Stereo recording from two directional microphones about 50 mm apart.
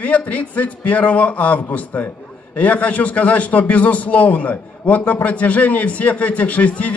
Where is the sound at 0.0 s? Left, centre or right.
Left.